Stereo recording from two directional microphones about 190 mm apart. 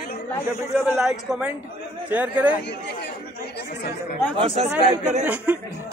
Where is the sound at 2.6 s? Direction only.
65° left (ahead or behind).